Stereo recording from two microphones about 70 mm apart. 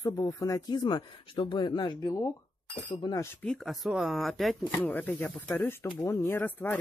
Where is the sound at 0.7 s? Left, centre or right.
Left.